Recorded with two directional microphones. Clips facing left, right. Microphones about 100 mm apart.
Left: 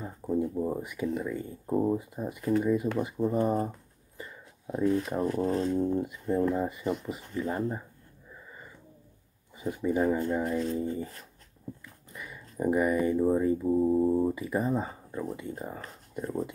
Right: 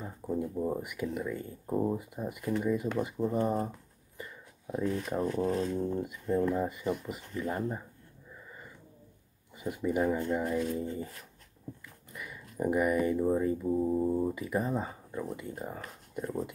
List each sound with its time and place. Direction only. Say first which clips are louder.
0.0 s a sound: left 4 dB; 5° left (ahead or behind)
0.8 s speech: left 3 dB; centre (ahead or behind)
9.9 s speech: left 3 dB; 15° left (ahead or behind)
10.5 s speech: left 2 dB; 10° right (ahead or behind)
12.1 s a sound: even; centre (ahead or behind)
13.6 s speech: left 4 dB; 10° left (ahead or behind)
15.3 s speech: left 2 dB; centre (ahead or behind)